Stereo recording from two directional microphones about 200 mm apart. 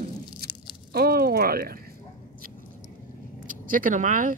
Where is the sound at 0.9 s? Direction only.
50° right (ahead or behind).